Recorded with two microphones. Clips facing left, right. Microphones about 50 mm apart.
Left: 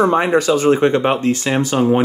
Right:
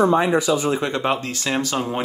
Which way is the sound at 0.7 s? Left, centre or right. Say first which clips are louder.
Left 7 dB; left.